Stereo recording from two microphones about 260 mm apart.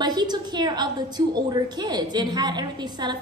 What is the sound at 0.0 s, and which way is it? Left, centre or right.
A woman's voice, centre.